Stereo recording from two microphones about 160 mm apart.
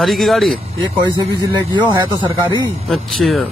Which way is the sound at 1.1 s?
30° right (ahead or behind).